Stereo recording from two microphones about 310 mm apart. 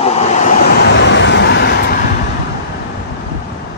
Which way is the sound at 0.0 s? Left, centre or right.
Left.